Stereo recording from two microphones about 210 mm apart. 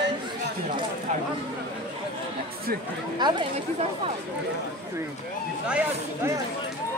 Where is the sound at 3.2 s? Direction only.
20° right (ahead or behind).